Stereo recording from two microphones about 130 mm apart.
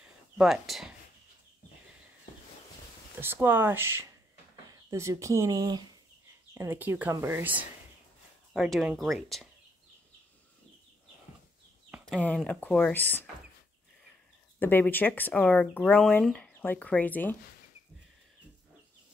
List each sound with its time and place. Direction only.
0.0 s a sound: 5° right (ahead or behind)
3.2 s speech: 15° right (ahead or behind)
6.5 s speech: 15° right (ahead or behind)
8.5 s speech: centre (ahead or behind)
12.1 s speech: 5° left (ahead or behind)
14.6 s speech: 15° left (ahead or behind)